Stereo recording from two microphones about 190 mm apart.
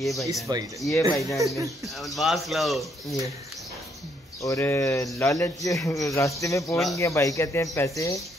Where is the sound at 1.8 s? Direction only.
Centre (ahead or behind).